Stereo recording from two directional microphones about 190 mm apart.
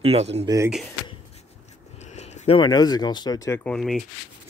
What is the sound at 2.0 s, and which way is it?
Speech, 35° left (ahead or behind).